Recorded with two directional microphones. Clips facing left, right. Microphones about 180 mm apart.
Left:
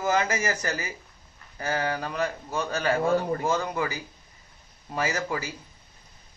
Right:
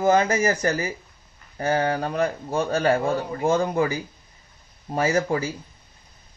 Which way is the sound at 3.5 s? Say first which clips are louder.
Right 5 dB; 30° right (ahead or behind).